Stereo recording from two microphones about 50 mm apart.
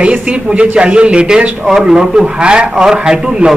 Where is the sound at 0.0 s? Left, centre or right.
Right.